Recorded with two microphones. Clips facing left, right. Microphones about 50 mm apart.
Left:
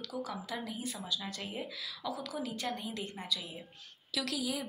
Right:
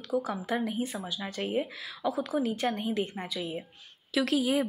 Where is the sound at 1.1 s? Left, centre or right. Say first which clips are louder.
Right 6 dB; right.